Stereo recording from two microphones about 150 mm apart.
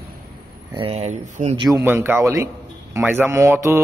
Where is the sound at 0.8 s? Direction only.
45° right (ahead or behind).